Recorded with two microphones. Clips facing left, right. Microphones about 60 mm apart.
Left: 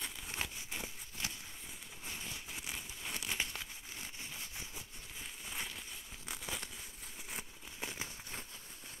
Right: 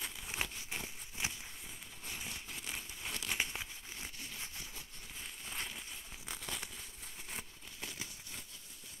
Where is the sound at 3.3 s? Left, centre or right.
Centre.